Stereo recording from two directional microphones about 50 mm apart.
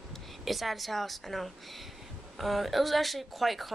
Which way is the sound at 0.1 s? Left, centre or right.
Centre.